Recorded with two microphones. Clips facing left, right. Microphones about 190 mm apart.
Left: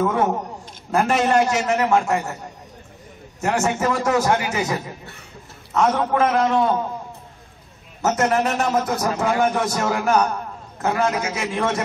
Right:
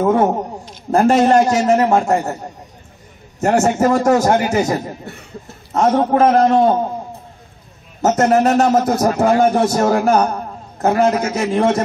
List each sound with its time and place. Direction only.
0.0 s a sound: 35° right (ahead or behind)
0.9 s a man's voice: 40° right (ahead or behind)
3.3 s a man's voice: 45° right (ahead or behind)
8.0 s a man's voice: 45° right (ahead or behind)